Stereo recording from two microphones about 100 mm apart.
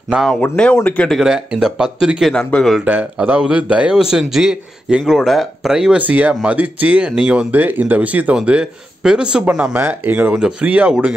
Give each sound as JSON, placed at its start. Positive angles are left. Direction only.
{"t": 0.3, "sound": "speech", "side_deg": 10}
{"t": 1.1, "sound": "a man's voice", "side_deg": -5}
{"t": 2.3, "sound": "speech", "side_deg": 10}
{"t": 2.8, "sound": "a man's voice", "side_deg": -15}
{"t": 9.8, "sound": "a man's voice", "side_deg": -20}